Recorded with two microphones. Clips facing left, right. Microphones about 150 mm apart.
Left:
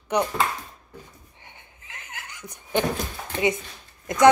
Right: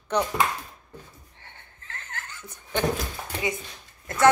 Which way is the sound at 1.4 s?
15° left (ahead or behind).